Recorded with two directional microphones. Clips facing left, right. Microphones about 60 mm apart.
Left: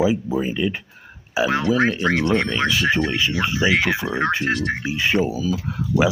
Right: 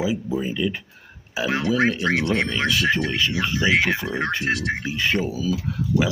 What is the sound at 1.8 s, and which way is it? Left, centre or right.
Speech, left.